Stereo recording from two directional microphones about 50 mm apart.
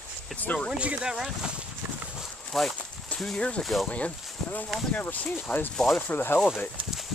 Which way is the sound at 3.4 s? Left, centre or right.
Left.